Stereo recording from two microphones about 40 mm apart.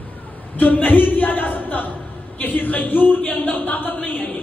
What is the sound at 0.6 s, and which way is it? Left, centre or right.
A man's voice, left.